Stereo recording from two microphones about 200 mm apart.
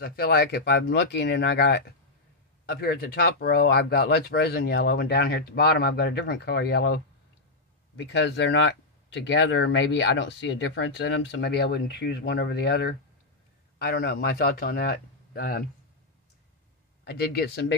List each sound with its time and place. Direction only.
0.0 s speech: 50° left (ahead or behind)
8.0 s speech: 60° left (ahead or behind)
17.0 s speech: 55° left (ahead or behind)